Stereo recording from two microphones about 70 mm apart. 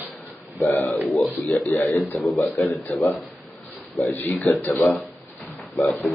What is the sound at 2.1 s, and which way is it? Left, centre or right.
Speech, left.